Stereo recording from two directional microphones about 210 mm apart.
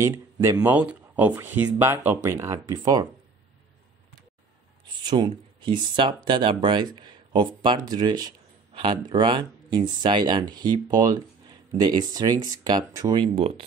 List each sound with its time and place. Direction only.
0.0 s speech: 15° right (ahead or behind)
5.0 s speech: 20° right (ahead or behind)